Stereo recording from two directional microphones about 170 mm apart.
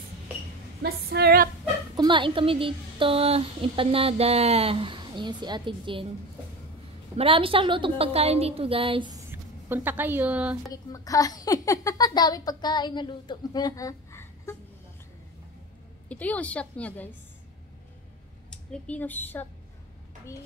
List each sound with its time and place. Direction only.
0.8 s female singing: 70° right (ahead or behind)
2.0 s a woman's voice: 30° right (ahead or behind)
7.2 s a woman's voice: 35° right (ahead or behind)
9.3 s speech: 10° right (ahead or behind)
10.7 s a woman's voice: 20° left (ahead or behind)
16.1 s a woman's voice: 10° left (ahead or behind)
18.5 s a woman's voice: 5° left (ahead or behind)